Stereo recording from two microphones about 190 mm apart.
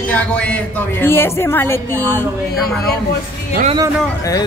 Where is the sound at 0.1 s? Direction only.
5° left (ahead or behind).